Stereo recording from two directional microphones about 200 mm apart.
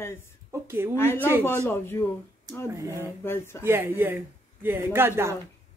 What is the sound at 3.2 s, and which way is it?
Speech, 10° left (ahead or behind).